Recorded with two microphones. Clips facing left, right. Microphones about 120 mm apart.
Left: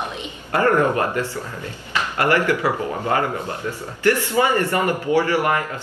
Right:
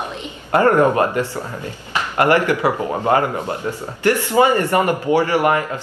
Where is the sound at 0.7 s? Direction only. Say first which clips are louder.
Right 4 dB; 20° right (ahead or behind).